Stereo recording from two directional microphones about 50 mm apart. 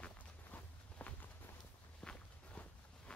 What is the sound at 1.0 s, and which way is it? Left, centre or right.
Walk, left.